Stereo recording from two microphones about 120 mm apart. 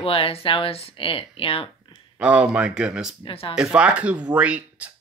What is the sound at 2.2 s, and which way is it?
Speech, 10° right (ahead or behind).